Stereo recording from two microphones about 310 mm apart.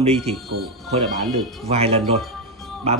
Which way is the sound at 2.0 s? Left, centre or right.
Centre.